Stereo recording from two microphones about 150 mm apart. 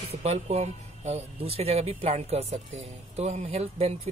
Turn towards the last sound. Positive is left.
turn(degrees=-45)  # may be behind; listen again after turning